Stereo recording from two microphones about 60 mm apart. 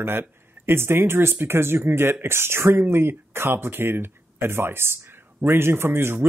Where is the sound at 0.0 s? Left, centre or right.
Right.